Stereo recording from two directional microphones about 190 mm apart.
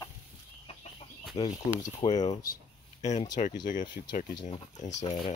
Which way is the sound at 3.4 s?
35° left (ahead or behind).